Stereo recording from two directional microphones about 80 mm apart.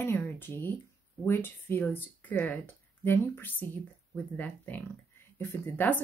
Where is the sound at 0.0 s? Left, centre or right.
Left.